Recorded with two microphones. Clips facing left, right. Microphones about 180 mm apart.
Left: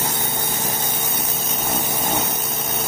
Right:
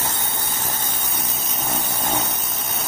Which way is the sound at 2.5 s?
Centre (ahead or behind).